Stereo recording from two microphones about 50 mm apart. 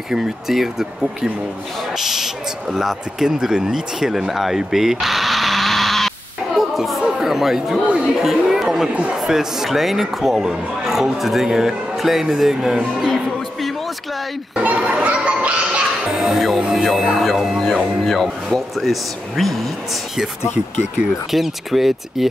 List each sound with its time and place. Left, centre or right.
0.1 s speech: centre
6.5 s music: centre
7.0 s chatter: centre
8.2 s a man's voice: centre
14.5 s a sound: right
16.2 s speech: centre
18.8 s speech: centre
20.5 s speech: right
21.3 s speech: centre